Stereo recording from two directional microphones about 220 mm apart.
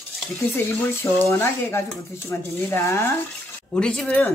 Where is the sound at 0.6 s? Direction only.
10° left (ahead or behind).